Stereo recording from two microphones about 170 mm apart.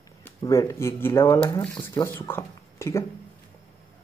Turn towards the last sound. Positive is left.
turn(degrees=15)  # may be behind; listen again after turning